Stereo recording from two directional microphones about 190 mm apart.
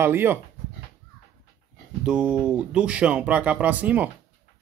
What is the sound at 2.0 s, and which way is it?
Speech, 5° right (ahead or behind).